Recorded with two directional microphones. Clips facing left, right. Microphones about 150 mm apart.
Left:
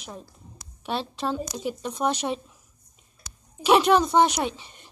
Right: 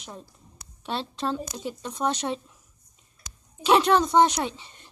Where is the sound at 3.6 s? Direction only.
10° left (ahead or behind).